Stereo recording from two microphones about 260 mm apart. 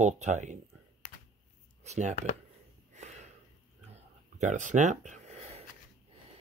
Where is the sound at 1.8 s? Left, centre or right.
Right.